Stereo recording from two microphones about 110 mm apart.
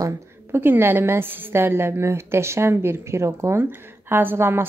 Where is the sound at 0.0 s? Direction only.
20° right (ahead or behind).